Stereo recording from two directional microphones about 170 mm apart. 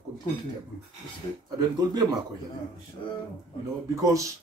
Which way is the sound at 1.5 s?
25° right (ahead or behind).